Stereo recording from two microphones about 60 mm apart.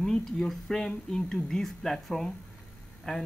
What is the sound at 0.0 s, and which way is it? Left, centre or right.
A man's voice, centre.